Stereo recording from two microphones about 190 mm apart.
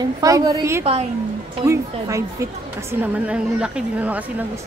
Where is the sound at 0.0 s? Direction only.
20° right (ahead or behind).